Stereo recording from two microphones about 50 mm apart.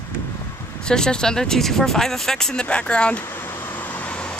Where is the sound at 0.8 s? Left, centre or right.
Centre.